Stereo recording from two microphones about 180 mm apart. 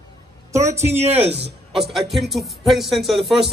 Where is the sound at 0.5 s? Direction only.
15° right (ahead or behind).